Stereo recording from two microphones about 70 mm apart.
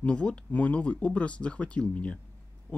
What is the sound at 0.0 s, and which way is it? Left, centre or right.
Speech, centre.